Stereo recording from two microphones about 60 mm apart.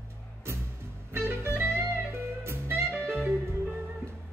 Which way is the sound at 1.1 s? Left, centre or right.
Right.